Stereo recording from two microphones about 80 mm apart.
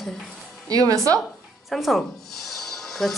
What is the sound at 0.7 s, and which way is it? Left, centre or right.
Speech, right.